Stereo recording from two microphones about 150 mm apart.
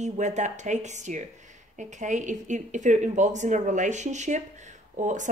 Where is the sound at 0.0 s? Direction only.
50° right (ahead or behind).